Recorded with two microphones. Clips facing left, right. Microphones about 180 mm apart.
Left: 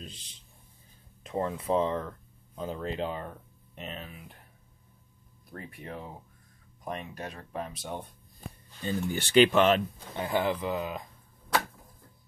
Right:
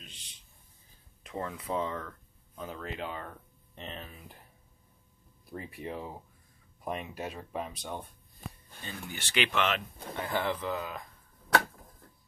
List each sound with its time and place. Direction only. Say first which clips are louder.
1.2 s speech: left 6 dB; 30° left (ahead or behind)
3.3 s speech: left 3 dB; 15° left (ahead or behind)
5.8 s speech: right 3 dB; 5° right (ahead or behind)
8.8 s speech: left 11 dB; 35° left (ahead or behind)
10.1 s speech: left 4 dB; 20° left (ahead or behind)